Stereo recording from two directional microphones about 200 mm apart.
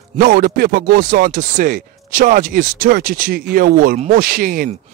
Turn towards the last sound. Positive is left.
turn(degrees=-45)  # may be behind; listen again after turning